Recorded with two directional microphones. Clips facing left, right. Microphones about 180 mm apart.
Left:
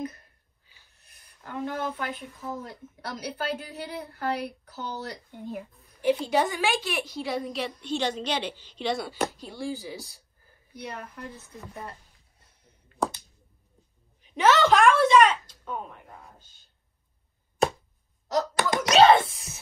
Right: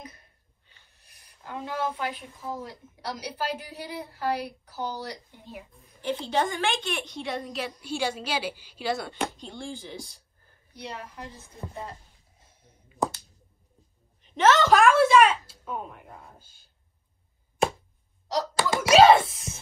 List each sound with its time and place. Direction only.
0.9 s a woman's voice: 50° left (ahead or behind)
5.9 s a woman's voice: 10° left (ahead or behind)
10.7 s a woman's voice: 50° left (ahead or behind)
11.3 s a woman's voice: 30° right (ahead or behind)
12.8 s a sound: centre (ahead or behind)
14.2 s a sound: centre (ahead or behind)
15.6 s speech: 5° right (ahead or behind)
18.7 s wail: 5° right (ahead or behind)